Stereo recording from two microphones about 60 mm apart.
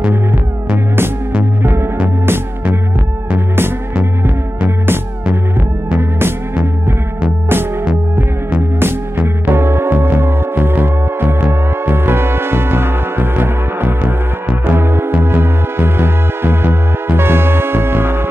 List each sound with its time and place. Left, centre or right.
1.6 s music: right
4.6 s music: right
8.7 s music: right